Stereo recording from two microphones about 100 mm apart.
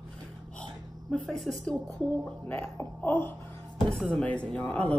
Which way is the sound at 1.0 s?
5° left (ahead or behind).